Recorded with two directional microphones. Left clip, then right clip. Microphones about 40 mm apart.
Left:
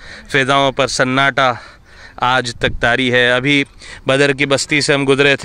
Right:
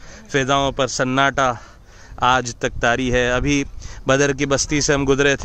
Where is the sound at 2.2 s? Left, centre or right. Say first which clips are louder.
Left 3 dB; left.